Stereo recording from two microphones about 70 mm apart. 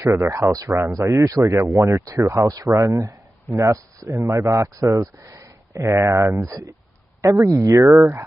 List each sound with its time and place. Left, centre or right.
0.0 s speech: right
0.7 s speech: right
4.1 s speech: right